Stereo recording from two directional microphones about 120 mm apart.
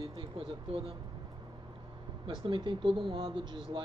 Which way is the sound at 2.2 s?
45° right (ahead or behind).